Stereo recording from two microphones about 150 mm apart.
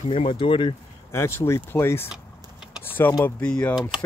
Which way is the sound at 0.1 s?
35° left (ahead or behind).